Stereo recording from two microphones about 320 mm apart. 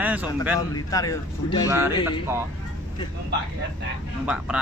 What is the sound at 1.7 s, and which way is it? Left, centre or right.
Speech, centre.